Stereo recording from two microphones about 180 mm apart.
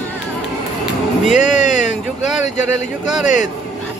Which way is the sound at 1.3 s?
40° left (ahead or behind).